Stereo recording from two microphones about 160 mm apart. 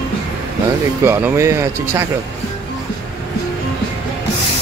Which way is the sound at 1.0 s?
15° right (ahead or behind).